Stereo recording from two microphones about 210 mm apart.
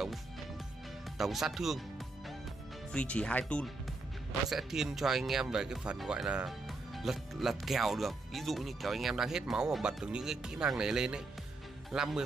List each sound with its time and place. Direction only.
1.1 s speech: centre (ahead or behind)
2.9 s speech: 5° left (ahead or behind)